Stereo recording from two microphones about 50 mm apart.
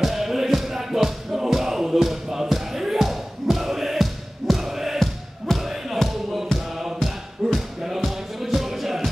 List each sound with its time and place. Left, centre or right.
0.0 s music: centre